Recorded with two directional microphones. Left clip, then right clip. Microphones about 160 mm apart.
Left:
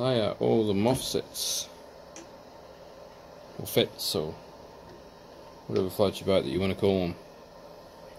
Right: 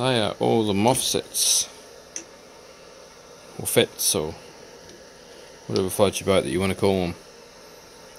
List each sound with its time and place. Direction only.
0.0 s speech: 65° right (ahead or behind)
3.6 s speech: 55° right (ahead or behind)
5.7 s speech: 60° right (ahead or behind)